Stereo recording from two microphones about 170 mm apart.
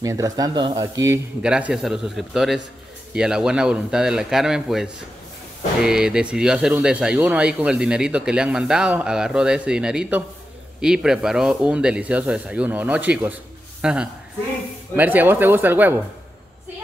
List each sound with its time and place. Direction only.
0.0 s speech: 20° right (ahead or behind)
1.4 s a man's voice: 5° right (ahead or behind)